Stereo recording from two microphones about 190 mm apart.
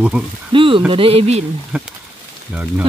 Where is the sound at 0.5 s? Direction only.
25° right (ahead or behind).